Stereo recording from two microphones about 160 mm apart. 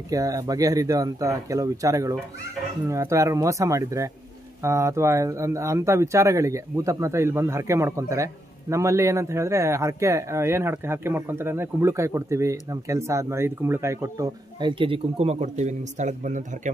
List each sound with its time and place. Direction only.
0.1 s speech: 20° right (ahead or behind); by 16.7 s 50° right (ahead or behind)